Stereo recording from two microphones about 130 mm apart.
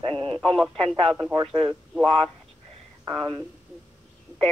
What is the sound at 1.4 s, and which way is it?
Speech, 45° right (ahead or behind).